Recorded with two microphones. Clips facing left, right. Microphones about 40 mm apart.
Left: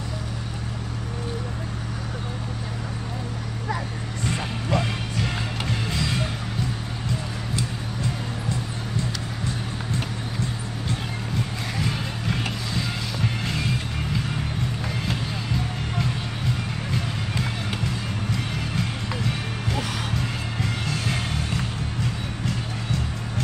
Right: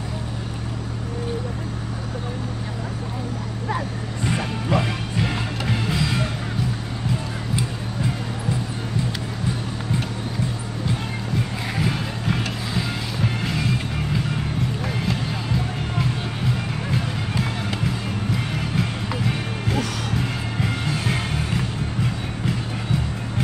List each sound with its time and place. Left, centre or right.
4.2 s music: centre
11.7 s music: centre
16.9 s music: centre